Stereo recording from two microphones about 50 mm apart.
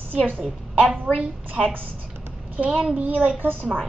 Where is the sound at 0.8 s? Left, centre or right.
Centre.